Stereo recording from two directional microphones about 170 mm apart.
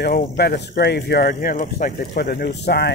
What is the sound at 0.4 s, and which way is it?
Speech, 75° left (ahead or behind).